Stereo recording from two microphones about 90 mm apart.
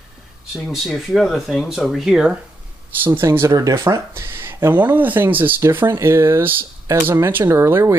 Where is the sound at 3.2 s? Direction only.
35° right (ahead or behind).